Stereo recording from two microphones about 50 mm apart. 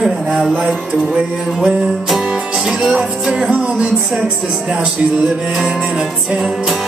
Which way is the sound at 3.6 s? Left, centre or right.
Right.